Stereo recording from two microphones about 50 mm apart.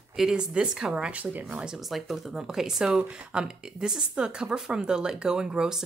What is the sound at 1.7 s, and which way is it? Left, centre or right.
Speech, centre.